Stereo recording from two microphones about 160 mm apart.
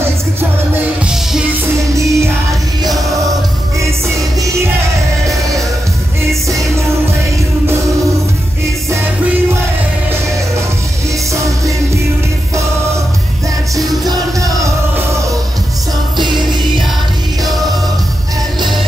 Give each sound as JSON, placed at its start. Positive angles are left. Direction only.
{"t": 2.0, "sound": "music", "side_deg": -20}
{"t": 11.3, "sound": "music", "side_deg": -20}
{"t": 14.0, "sound": "music", "side_deg": -20}
{"t": 16.2, "sound": "music", "side_deg": -30}